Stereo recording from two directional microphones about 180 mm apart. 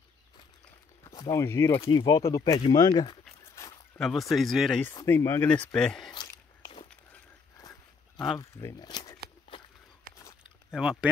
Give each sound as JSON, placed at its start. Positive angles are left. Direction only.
{"t": 1.0, "sound": "speech", "side_deg": 20}
{"t": 3.9, "sound": "speech", "side_deg": 5}
{"t": 4.9, "sound": "speech", "side_deg": 15}
{"t": 6.1, "sound": "a sound", "side_deg": 20}
{"t": 8.4, "sound": "speech", "side_deg": 15}
{"t": 9.5, "sound": "a sound", "side_deg": 30}
{"t": 10.7, "sound": "speech", "side_deg": -5}